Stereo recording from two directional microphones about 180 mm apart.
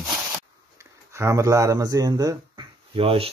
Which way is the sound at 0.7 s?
15° right (ahead or behind).